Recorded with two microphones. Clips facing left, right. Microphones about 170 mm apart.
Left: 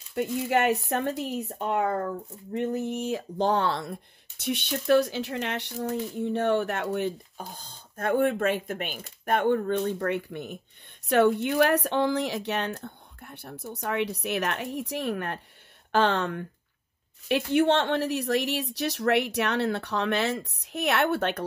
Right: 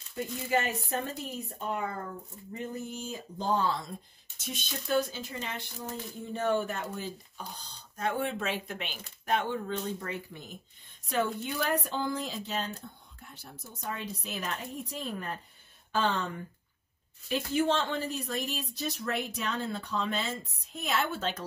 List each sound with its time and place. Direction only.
0.1 s speech: 70° left (ahead or behind)
7.3 s speech: 50° left (ahead or behind)